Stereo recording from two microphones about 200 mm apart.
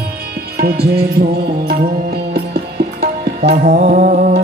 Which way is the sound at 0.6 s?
50° right (ahead or behind).